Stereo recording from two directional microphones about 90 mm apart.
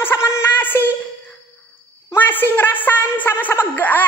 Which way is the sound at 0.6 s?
20° left (ahead or behind).